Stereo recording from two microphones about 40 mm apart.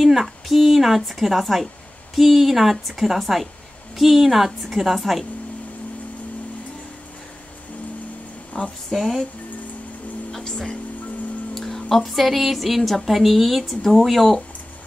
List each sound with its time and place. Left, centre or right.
0.1 s speech: centre
8.5 s speech: left
8.9 s speech: centre
10.4 s speech: centre
11.5 s speech: centre